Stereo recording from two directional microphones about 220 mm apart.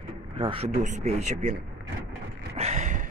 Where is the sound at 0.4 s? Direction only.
25° right (ahead or behind).